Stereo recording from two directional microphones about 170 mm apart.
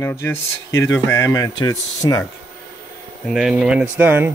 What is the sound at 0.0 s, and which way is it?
Speech, 15° left (ahead or behind).